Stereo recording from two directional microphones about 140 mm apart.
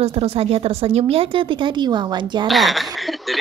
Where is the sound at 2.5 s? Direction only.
Centre (ahead or behind).